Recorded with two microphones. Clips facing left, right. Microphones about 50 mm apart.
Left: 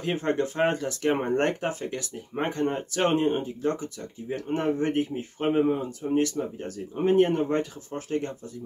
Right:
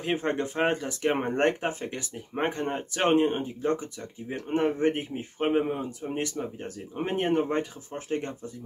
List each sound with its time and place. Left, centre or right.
0.0 s speech: centre